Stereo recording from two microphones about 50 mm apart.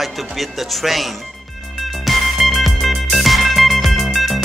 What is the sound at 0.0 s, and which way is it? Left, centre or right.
Speech, centre.